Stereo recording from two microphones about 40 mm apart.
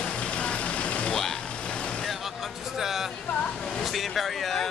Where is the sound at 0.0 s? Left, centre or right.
Left.